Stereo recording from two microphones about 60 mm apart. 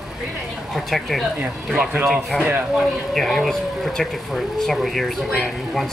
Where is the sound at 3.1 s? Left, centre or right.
Centre.